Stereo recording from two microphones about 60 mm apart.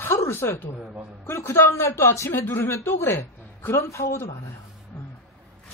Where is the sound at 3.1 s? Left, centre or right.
Left.